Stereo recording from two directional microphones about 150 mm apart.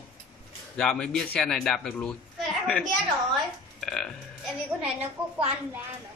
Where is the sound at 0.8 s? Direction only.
5° left (ahead or behind).